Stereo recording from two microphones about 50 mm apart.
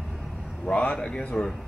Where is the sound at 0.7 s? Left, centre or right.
Left.